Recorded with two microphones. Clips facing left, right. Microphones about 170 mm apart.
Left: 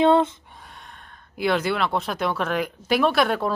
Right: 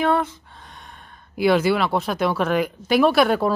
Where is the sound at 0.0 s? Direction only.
25° left (ahead or behind).